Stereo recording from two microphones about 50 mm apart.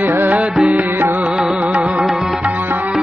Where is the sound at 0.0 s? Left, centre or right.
Right.